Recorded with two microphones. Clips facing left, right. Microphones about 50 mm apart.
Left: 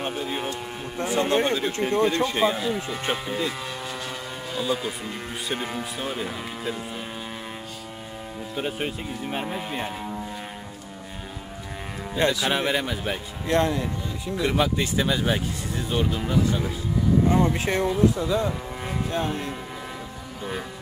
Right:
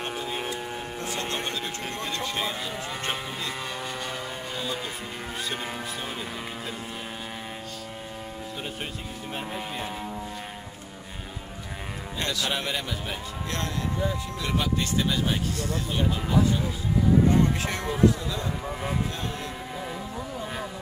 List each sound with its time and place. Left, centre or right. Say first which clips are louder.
1.0 s a man's voice: left 11 dB; centre
2.5 s speech: left 5 dB; centre
4.6 s speech: left 8 dB; centre
8.5 s a man's voice: left 9 dB; centre
9.5 s speech: left 3 dB; centre
12.2 s a man's voice: left 7 dB; centre
17.4 s a man's voice: left 3 dB; left
19.1 s speech: left 7 dB; left